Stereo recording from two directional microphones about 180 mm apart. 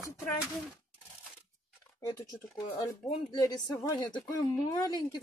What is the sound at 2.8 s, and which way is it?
A woman's voice, 20° left (ahead or behind).